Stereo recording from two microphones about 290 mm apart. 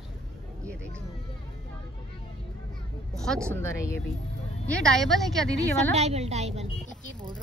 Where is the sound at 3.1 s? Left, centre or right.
Centre.